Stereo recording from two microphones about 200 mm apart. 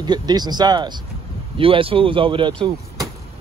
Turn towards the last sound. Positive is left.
turn(degrees=-25)  # may be behind; listen again after turning